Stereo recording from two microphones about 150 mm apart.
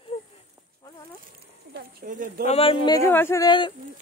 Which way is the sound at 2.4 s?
40° left (ahead or behind).